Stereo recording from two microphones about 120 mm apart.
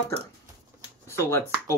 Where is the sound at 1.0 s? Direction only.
20° left (ahead or behind).